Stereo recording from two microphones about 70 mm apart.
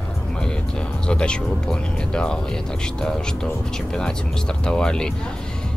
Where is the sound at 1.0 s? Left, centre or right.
Centre.